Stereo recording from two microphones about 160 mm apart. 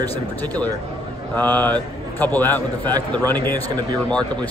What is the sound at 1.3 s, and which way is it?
Speech, 10° left (ahead or behind).